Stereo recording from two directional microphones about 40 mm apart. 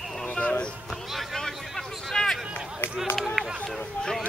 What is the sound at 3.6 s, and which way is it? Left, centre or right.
Speech, centre.